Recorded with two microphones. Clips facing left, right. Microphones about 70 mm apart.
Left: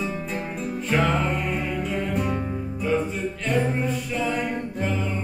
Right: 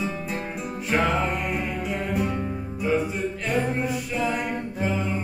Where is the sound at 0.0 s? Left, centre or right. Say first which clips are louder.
Even; centre.